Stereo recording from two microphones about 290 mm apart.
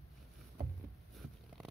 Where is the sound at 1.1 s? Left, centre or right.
Centre.